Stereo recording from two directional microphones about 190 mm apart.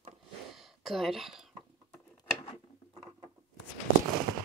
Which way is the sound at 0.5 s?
Centre (ahead or behind).